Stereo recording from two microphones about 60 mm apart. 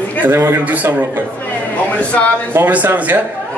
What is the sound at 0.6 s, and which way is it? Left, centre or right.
Speech, right.